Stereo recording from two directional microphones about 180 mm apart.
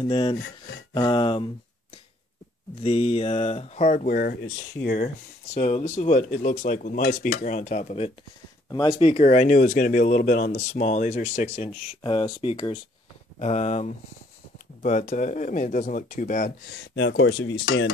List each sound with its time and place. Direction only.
0.0 s speech: 30° left (ahead or behind)
2.8 s speech: 35° left (ahead or behind)
8.6 s speech: 20° left (ahead or behind)
9.1 s speech: 40° left (ahead or behind)
12.0 s speech: 30° left (ahead or behind); by 16.5 s 45° left (ahead or behind)
16.7 s speech: 80° left